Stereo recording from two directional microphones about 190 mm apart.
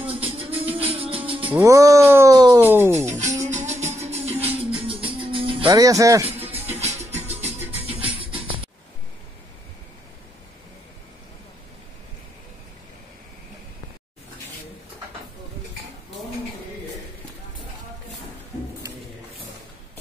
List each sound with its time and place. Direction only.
0.1 s music: 30° right (ahead or behind)
1.5 s speech: 15° right (ahead or behind)
3.1 s music: 40° right (ahead or behind); by 6.2 s 15° right (ahead or behind)
6.3 s music: 30° right (ahead or behind)